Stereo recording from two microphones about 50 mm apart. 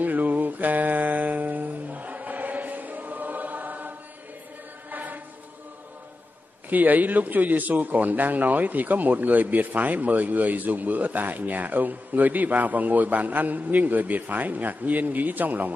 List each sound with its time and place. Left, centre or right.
0.0 s music: right
4.9 s chant: right
6.7 s speech: right